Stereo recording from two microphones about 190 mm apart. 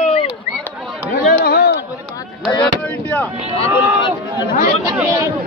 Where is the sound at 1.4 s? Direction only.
55° left (ahead or behind).